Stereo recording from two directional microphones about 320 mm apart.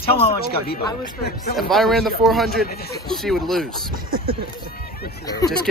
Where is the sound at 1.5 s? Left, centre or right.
Centre.